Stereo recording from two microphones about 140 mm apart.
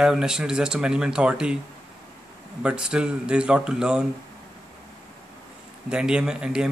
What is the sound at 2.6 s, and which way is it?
Speech, 5° right (ahead or behind).